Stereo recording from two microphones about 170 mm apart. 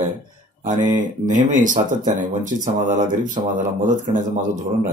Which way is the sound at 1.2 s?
50° right (ahead or behind).